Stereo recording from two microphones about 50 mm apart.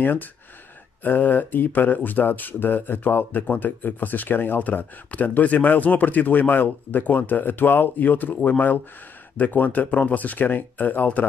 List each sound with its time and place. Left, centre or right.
0.0 s speech: left